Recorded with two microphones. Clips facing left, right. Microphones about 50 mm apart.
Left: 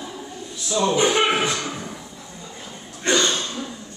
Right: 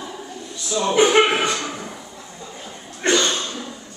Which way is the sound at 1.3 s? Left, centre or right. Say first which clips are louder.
Right 1 dB; centre.